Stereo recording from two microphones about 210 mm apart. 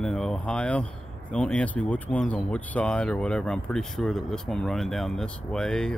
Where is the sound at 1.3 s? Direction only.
5° left (ahead or behind).